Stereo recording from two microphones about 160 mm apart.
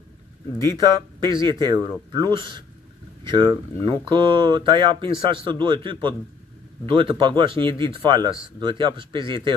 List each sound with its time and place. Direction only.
0.7 s speech: 25° right (ahead or behind)